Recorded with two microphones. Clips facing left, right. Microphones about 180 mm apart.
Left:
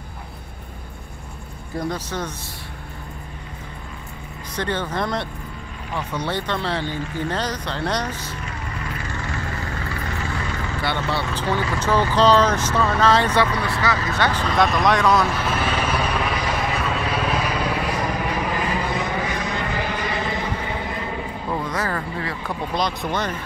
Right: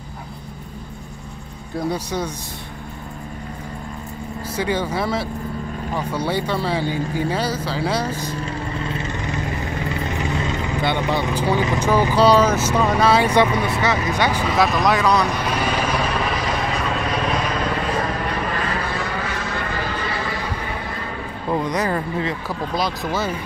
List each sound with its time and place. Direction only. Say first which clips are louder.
1.8 s speech: right 3 dB; 10° right (ahead or behind)
4.6 s speech: right 2 dB; 10° right (ahead or behind)
8.5 s vehicle: right 5 dB; 25° right (ahead or behind); by 15.5 s 5° left (ahead or behind)
15.5 s speech: right 1 dB; 10° right (ahead or behind)
16.0 s vehicle: right 1 dB; centre (ahead or behind); by 21.0 s 20° left (ahead or behind)
21.5 s speech: right 5 dB; 20° right (ahead or behind)
22.5 s speech: right 1 dB; 5° right (ahead or behind)